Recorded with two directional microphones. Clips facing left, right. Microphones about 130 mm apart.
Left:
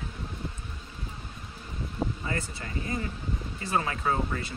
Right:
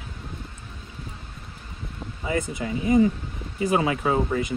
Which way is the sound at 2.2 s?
15° right (ahead or behind).